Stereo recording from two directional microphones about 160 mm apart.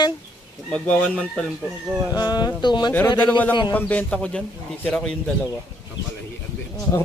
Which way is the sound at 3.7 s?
10° left (ahead or behind).